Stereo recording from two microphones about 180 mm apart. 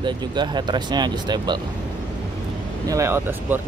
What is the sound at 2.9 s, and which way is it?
Speech, 15° right (ahead or behind).